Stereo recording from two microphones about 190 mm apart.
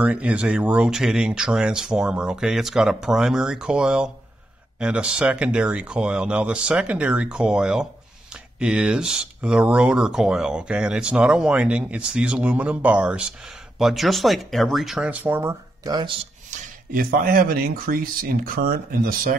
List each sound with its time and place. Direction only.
0.0 s speech: 5° right (ahead or behind)
16.4 s speech: 50° right (ahead or behind)